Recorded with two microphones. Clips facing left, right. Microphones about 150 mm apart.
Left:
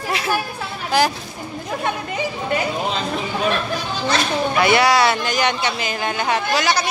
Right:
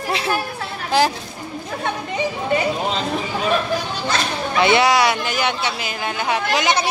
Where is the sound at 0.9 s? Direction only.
25° right (ahead or behind).